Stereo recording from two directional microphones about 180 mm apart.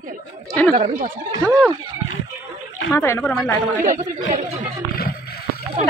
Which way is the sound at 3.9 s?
40° right (ahead or behind).